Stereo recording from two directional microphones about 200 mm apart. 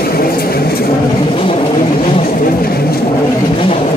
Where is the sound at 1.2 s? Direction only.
25° left (ahead or behind).